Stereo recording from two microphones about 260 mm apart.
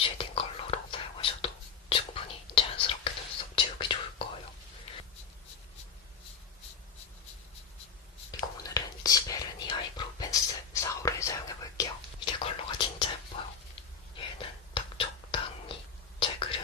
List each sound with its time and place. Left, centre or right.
0.0 s whispering: left
8.3 s whispering: centre
13.3 s sizzle: left
14.1 s whispering: left